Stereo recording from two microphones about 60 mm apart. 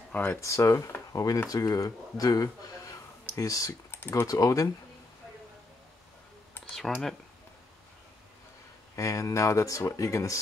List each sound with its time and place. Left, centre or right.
0.4 s speech: left
1.1 s speech: left
6.7 s speech: centre
8.9 s speech: left